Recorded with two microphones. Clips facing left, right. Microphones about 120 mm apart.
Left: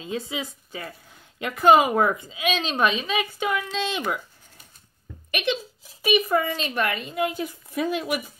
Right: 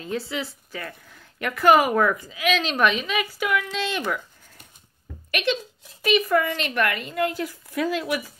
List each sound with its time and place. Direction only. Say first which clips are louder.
0.0 s a woman's voice: right 1 dB; 15° left (ahead or behind)
5.3 s a woman's voice: right 1 dB; 20° left (ahead or behind)